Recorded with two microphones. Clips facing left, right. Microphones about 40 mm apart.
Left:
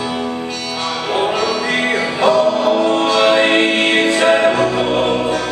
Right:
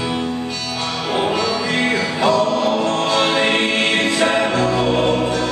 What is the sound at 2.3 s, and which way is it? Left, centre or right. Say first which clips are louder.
Music: left 4 dB; left.